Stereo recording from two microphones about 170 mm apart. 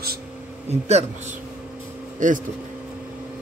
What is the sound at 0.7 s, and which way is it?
Speech, 40° right (ahead or behind).